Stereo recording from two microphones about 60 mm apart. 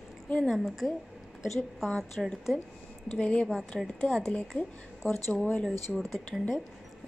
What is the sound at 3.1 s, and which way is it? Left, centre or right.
Speech, centre.